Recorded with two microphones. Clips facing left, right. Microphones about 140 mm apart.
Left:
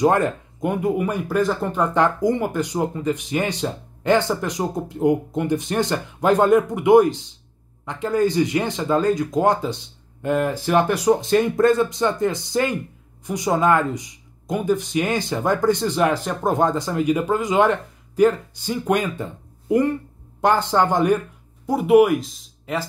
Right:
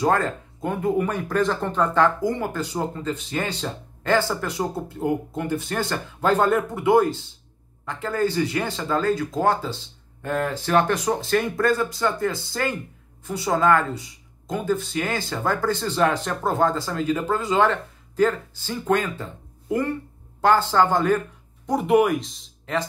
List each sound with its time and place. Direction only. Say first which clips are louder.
0.0 s speech: left 4 dB; 15° left (ahead or behind)
21.6 s speech: left 4 dB; 5° left (ahead or behind)